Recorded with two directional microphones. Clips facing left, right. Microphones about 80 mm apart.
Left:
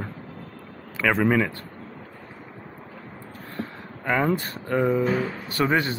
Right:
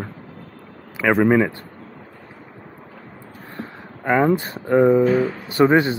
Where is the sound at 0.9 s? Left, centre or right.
Centre.